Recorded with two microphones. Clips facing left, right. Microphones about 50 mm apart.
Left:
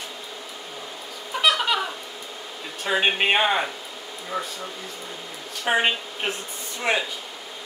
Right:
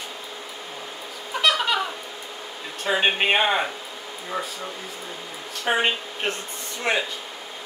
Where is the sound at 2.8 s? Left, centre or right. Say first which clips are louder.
Even; centre.